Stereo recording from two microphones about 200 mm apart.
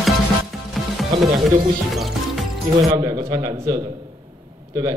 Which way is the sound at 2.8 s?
20° right (ahead or behind).